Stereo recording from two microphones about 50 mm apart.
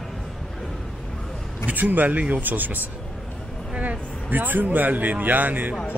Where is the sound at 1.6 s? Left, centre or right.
Right.